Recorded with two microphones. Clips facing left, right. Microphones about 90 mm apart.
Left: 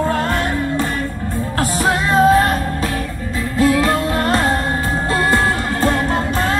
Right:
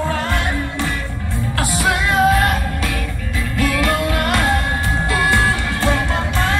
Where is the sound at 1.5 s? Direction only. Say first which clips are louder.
Left 2 dB; 35° left (ahead or behind).